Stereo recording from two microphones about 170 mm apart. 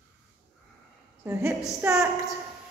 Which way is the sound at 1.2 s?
15° right (ahead or behind).